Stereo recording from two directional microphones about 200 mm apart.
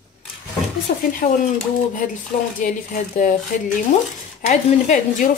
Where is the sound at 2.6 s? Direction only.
40° left (ahead or behind).